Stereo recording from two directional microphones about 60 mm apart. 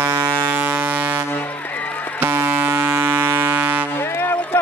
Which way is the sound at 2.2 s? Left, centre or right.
Right.